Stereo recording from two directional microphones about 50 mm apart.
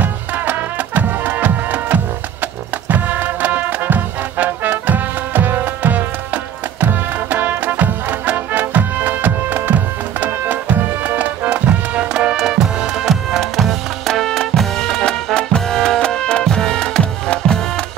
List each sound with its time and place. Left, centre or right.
0.0 s music: right
12.3 s music: centre
13.4 s music: centre
17.0 s music: left